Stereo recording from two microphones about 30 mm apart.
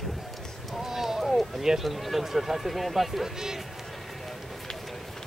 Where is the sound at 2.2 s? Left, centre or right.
Centre.